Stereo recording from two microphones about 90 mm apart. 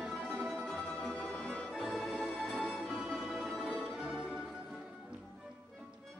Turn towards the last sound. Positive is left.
turn(degrees=-10)  # may be behind; listen again after turning